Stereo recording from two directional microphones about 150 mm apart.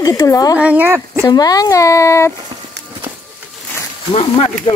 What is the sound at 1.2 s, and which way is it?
Speech, 25° left (ahead or behind).